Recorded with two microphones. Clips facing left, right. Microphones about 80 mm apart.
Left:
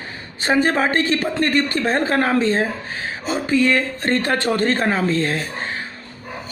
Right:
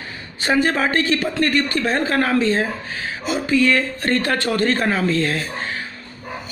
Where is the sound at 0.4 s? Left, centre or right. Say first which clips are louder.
Left 1 dB; left.